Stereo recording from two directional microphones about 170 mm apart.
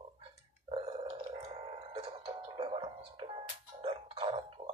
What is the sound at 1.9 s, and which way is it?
Music, 35° right (ahead or behind).